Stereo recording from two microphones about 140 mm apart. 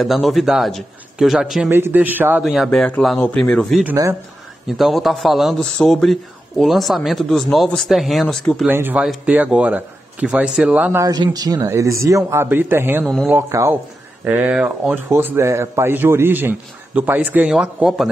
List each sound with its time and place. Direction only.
0.0 s speech: centre (ahead or behind)
1.7 s a man's voice: 15° right (ahead or behind)
2.4 s speech: centre (ahead or behind)
3.8 s a man's voice: 15° right (ahead or behind)
4.6 s speech: centre (ahead or behind)
8.6 s a man's voice: 15° right (ahead or behind)
11.0 s speech: 30° right (ahead or behind)
13.0 s speech: centre (ahead or behind)
13.3 s speech: 20° right (ahead or behind)
14.2 s a man's voice: 10° right (ahead or behind)